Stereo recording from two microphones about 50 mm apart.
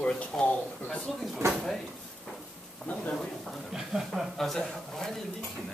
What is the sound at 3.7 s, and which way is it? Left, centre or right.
Speech, centre.